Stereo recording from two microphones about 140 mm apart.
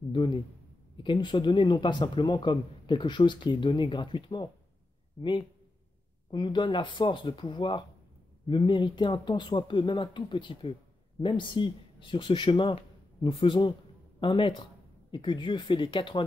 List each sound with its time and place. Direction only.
0.1 s speech: 35° left (ahead or behind)
6.3 s speech: 35° left (ahead or behind)